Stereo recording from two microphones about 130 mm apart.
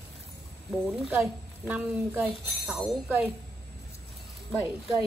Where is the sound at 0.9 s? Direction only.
10° right (ahead or behind).